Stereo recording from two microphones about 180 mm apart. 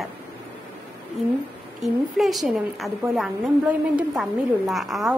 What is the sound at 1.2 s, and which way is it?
A woman's voice, centre (ahead or behind).